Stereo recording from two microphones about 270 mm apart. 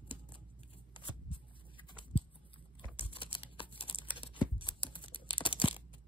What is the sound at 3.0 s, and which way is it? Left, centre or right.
Computer keyboard, centre.